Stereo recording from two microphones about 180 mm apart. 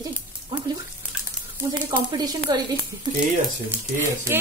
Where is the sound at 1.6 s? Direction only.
20° right (ahead or behind).